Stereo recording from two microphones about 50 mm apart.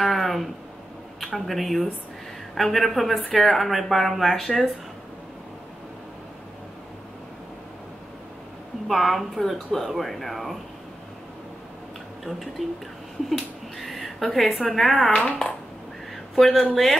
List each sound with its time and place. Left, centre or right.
0.0 s a sound: centre
1.2 s speech: centre
8.8 s speech: centre
12.3 s speech: centre
13.7 s a sound: centre
14.7 s speech: centre
15.0 s speech: left
16.3 s speech: centre